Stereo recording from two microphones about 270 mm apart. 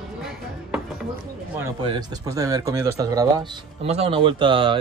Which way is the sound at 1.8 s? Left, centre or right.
Centre.